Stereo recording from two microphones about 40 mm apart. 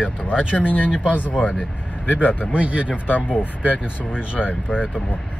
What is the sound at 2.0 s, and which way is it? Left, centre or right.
Speech, left.